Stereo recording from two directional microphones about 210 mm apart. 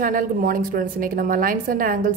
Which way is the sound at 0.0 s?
40° right (ahead or behind).